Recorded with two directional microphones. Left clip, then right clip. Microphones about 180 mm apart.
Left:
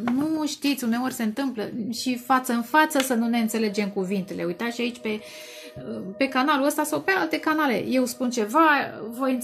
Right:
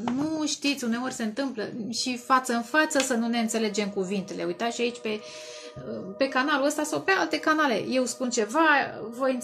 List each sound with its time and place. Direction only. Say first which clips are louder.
0.3 s speech: left 2 dB; 45° left (ahead or behind)